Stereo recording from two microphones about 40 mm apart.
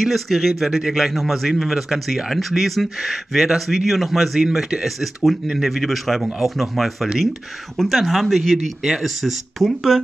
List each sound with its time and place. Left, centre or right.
0.0 s a man's voice: centre
4.4 s a man's voice: centre
4.8 s speech: centre
8.8 s a man's voice: centre
9.7 s speech: centre